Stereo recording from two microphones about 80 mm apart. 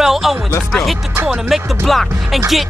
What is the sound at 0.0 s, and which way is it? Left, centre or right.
Music, centre.